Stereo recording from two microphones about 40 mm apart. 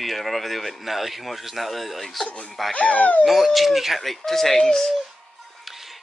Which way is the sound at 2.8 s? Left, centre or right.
Left.